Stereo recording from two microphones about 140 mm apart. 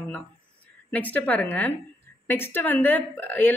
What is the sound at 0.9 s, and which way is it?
A woman's voice, 10° left (ahead or behind).